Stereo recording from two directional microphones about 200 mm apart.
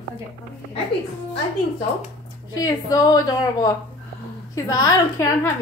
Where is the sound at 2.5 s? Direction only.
20° left (ahead or behind).